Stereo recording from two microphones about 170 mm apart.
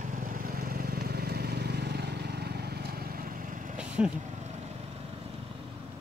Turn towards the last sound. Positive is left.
turn(degrees=-5)  # may be behind; listen again after turning